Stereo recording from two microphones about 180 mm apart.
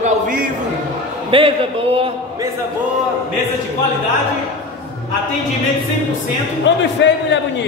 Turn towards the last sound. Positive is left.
turn(degrees=85)